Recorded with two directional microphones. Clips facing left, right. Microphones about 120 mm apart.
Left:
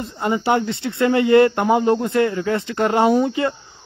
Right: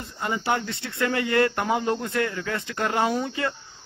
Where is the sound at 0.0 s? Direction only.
25° left (ahead or behind).